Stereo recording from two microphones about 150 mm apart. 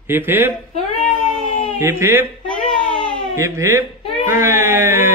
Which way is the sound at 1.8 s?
15° right (ahead or behind).